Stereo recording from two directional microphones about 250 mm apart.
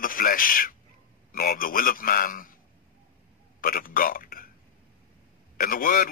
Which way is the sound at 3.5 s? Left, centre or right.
Left.